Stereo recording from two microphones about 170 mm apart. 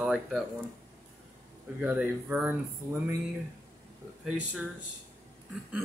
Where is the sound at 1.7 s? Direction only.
10° right (ahead or behind).